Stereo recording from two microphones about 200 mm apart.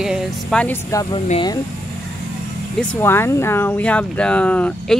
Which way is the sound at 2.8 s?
10° left (ahead or behind).